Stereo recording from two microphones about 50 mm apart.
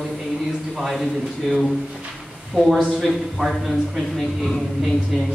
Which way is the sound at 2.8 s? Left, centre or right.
Centre.